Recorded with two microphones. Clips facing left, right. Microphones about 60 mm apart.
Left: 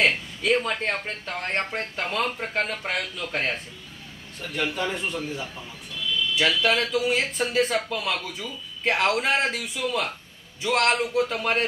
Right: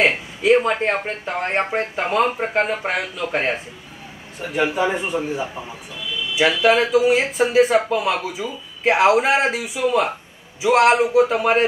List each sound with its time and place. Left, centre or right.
0.0 s speech: centre